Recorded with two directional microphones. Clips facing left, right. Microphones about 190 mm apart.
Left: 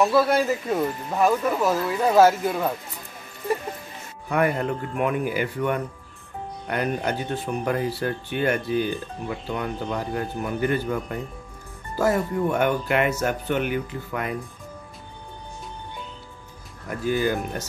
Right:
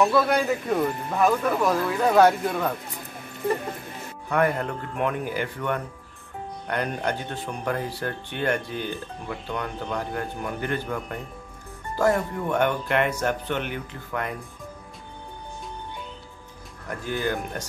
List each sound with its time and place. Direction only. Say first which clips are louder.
0.0 s speech: left 1 dB; 5° left (ahead or behind)
4.3 s speech: left 1 dB; 10° left (ahead or behind)
17.0 s speech: left 4 dB; 10° left (ahead or behind)